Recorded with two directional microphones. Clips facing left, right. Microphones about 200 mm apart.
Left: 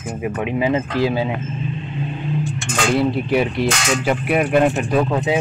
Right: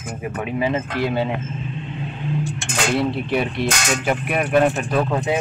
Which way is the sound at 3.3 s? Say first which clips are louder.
Left 3 dB; 5° left (ahead or behind).